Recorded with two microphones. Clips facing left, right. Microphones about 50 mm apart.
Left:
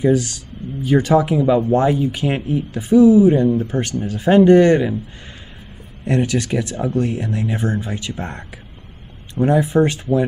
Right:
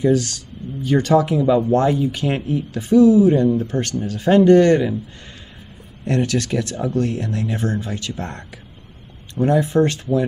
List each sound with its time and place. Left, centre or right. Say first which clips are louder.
0.0 s speech: left 1 dB; centre
6.0 s speech: left 1 dB; centre